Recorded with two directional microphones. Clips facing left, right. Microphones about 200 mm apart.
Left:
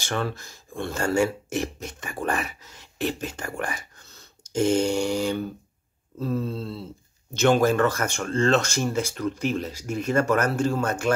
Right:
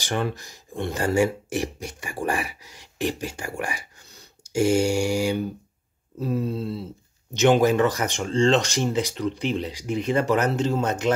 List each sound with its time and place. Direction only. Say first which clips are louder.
0.0 s speech: right 2 dB; 15° right (ahead or behind)